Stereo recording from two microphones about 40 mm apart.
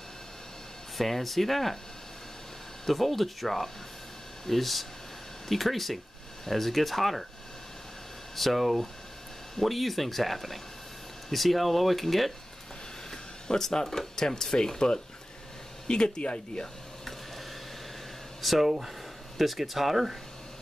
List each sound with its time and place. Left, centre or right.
0.9 s speech: centre
2.9 s speech: centre
8.4 s speech: centre; by 16.6 s left
18.4 s speech: centre